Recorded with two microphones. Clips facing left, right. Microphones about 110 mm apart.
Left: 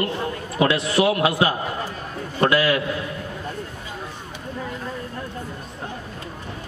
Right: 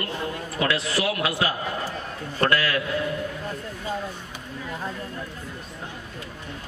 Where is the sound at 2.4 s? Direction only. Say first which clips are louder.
Left 4 dB; 15° left (ahead or behind).